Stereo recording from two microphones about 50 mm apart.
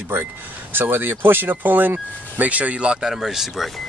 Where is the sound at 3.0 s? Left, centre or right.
Centre.